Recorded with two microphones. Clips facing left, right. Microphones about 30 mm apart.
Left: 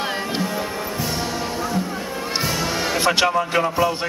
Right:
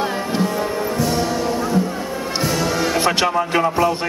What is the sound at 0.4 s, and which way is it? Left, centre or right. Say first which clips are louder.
Music: right 4 dB; centre.